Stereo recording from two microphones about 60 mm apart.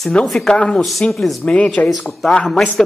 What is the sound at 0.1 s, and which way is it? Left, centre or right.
Speech, centre.